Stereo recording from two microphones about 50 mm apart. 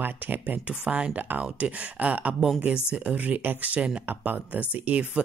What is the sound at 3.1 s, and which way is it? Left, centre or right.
Speech, right.